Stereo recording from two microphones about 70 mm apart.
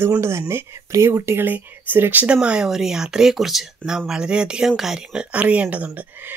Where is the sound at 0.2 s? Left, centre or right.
Right.